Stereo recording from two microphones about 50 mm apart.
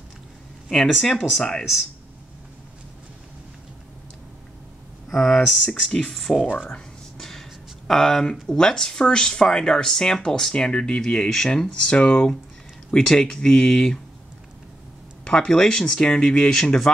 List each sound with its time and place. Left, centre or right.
1.0 s speech: centre
1.6 s speech: centre
5.1 s speech: centre
15.2 s speech: centre